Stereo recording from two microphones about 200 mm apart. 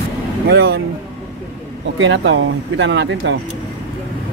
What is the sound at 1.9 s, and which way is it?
Speech, 70° right (ahead or behind).